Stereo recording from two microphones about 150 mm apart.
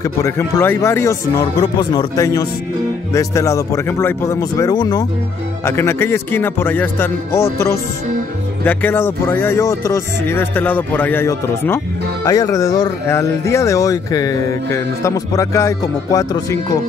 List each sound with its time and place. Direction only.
0.0 s speech: 20° left (ahead or behind)
5.7 s speech: 15° left (ahead or behind)